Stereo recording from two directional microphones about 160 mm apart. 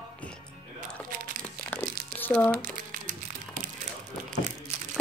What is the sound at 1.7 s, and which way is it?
Crumpling, 10° left (ahead or behind).